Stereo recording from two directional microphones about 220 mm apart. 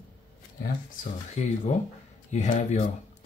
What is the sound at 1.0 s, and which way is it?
Speech, 35° left (ahead or behind).